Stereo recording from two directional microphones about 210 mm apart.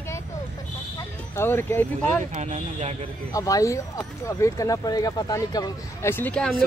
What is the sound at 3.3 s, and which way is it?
Speech, 15° left (ahead or behind).